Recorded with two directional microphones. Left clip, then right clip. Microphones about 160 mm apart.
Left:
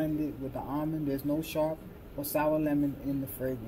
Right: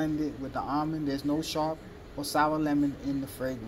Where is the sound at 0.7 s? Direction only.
15° left (ahead or behind).